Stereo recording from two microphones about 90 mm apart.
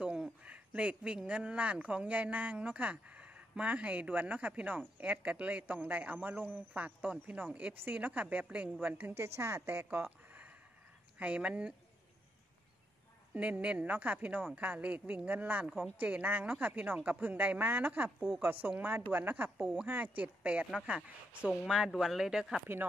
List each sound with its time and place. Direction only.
0.0 s a woman's voice: 10° right (ahead or behind)
13.3 s speech: 15° right (ahead or behind)
15.6 s speech: centre (ahead or behind)
16.0 s a woman's voice: 20° right (ahead or behind)